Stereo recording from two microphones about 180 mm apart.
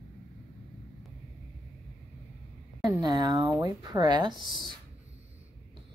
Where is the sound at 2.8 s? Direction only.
20° right (ahead or behind).